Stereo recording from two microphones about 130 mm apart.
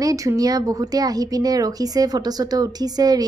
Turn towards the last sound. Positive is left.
turn(degrees=-30)  # may be behind; listen again after turning